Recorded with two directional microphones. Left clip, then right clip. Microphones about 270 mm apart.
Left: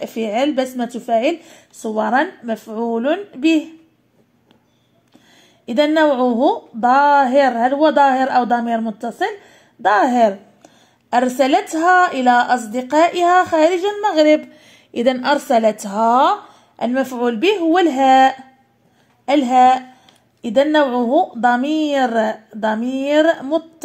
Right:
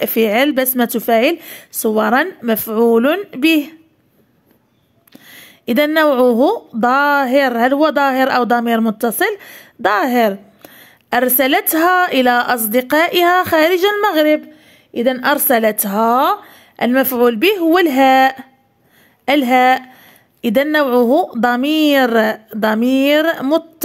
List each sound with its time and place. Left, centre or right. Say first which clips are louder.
0.0 s speech: right 5 dB; right
5.3 s speech: right 4 dB; right